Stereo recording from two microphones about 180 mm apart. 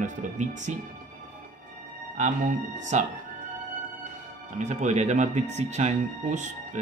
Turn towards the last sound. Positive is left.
turn(degrees=-40)  # may be behind; listen again after turning